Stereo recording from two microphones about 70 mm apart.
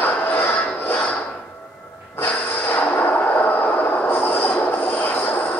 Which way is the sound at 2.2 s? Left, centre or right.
Left.